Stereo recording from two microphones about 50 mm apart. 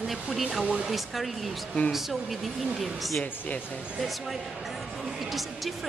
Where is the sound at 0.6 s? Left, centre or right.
Right.